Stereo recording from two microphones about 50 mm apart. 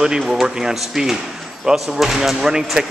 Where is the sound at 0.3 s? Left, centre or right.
Centre.